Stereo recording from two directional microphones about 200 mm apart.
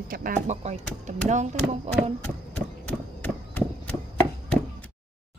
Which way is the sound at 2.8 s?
10° left (ahead or behind).